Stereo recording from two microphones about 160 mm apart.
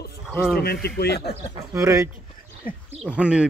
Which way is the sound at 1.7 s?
20° right (ahead or behind).